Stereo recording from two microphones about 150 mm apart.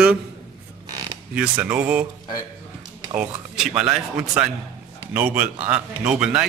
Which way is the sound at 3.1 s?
5° right (ahead or behind).